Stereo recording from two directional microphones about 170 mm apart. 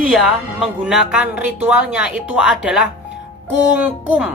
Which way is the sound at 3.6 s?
10° right (ahead or behind).